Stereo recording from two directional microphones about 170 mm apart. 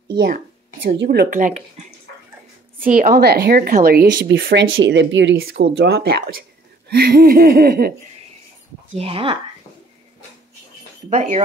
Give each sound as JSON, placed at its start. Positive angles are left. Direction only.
{"t": 0.8, "sound": "speech", "side_deg": -70}
{"t": 3.0, "sound": "speech", "side_deg": -65}
{"t": 6.9, "sound": "laughter", "side_deg": -65}
{"t": 9.0, "sound": "speech", "side_deg": -30}
{"t": 11.1, "sound": "speech", "side_deg": -40}